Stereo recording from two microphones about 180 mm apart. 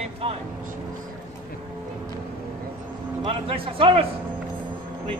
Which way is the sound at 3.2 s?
30° right (ahead or behind).